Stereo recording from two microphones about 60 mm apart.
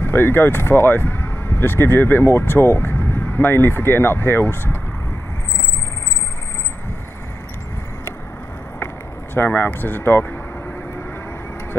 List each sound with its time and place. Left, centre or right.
0.0 s speech: left
9.3 s speech: left